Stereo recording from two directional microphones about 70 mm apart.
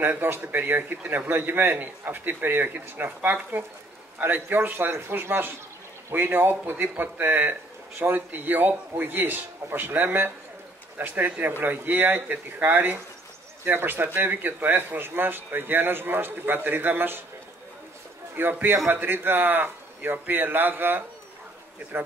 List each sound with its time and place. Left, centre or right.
0.0 s a man's voice: right
18.3 s a man's voice: right